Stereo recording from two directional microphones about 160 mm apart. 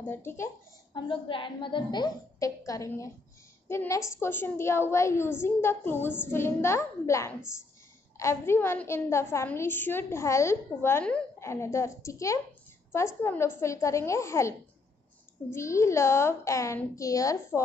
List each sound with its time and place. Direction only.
0.0 s a woman's voice: 15° left (ahead or behind)
0.9 s a woman's voice: 30° left (ahead or behind)
15.5 s a woman's voice: 20° left (ahead or behind)